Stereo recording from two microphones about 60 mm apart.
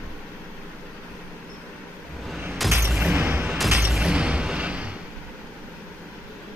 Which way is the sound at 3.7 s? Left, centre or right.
Centre.